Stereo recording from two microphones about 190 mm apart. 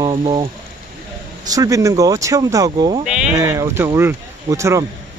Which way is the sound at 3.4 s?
15° right (ahead or behind).